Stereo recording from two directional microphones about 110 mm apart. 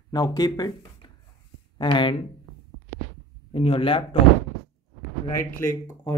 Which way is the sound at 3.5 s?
55° left (ahead or behind).